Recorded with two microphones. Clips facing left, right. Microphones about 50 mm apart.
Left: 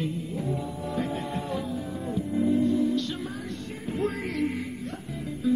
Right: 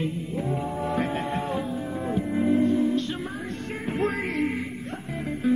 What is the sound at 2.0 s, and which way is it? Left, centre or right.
Music, right.